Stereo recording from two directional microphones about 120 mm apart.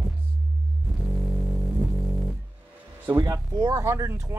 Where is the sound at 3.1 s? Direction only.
30° right (ahead or behind).